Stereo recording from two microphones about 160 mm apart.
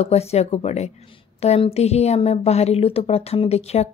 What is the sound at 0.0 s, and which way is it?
A woman's voice, 40° left (ahead or behind).